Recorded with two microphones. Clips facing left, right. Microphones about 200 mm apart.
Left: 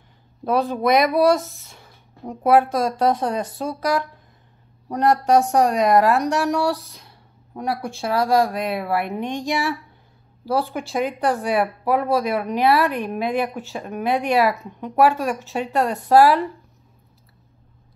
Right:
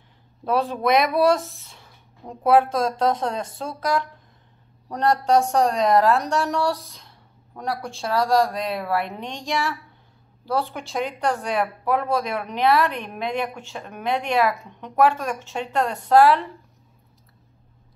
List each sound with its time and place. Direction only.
0.5 s a woman's voice: centre (ahead or behind)